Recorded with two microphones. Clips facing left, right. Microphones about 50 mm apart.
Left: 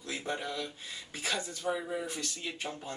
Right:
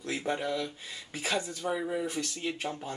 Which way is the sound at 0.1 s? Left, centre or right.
Centre.